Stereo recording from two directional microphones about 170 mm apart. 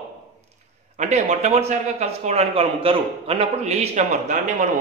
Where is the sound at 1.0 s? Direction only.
40° right (ahead or behind).